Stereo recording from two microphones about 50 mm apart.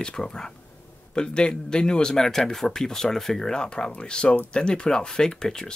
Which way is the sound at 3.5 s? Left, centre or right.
Centre.